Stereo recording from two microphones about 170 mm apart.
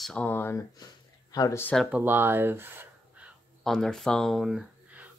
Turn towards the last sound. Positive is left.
turn(degrees=-5)  # may be behind; listen again after turning